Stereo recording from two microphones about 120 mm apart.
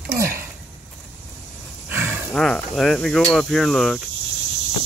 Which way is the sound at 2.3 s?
5° left (ahead or behind).